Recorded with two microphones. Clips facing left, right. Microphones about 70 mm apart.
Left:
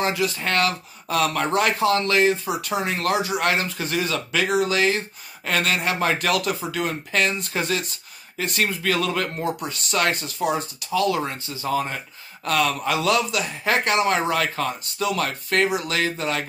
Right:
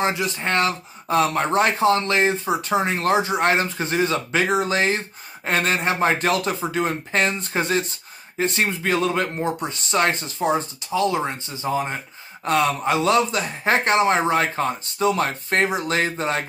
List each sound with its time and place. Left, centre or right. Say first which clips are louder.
0.0 s speech: right 1 dB; right